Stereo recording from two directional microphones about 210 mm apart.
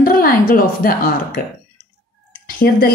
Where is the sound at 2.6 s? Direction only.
45° left (ahead or behind).